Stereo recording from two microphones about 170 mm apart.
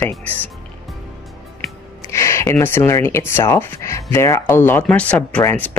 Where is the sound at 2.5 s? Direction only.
15° left (ahead or behind).